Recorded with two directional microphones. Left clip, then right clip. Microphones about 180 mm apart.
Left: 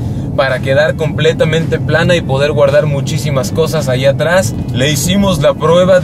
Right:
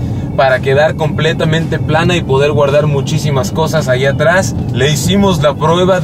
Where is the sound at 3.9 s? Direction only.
25° left (ahead or behind).